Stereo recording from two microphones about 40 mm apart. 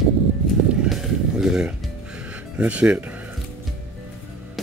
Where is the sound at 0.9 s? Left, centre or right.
Centre.